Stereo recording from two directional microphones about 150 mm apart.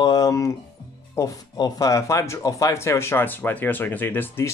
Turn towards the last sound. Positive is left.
turn(degrees=15)  # may be behind; listen again after turning